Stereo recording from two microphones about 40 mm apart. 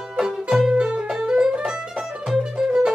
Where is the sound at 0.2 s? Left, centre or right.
Centre.